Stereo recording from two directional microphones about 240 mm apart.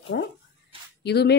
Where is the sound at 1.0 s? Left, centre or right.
Left.